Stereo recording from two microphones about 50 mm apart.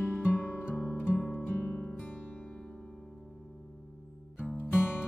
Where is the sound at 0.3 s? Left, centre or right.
Left.